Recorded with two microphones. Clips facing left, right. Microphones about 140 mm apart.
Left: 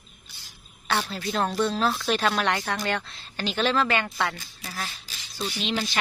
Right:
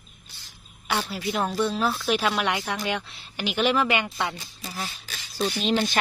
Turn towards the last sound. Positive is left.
turn(degrees=-45)  # may be behind; listen again after turning